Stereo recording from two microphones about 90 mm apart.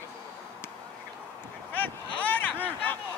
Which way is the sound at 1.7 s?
20° left (ahead or behind).